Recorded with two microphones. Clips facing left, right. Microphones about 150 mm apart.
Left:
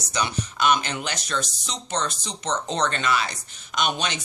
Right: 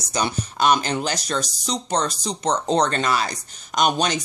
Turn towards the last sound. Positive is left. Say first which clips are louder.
# right 6 dB
turn(degrees=-40)  # may be behind; listen again after turning